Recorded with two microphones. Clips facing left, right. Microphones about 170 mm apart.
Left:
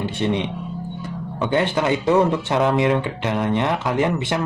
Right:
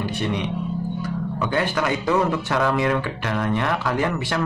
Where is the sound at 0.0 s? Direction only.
25° left (ahead or behind).